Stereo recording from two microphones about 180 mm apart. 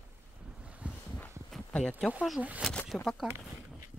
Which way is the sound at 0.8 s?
5° right (ahead or behind).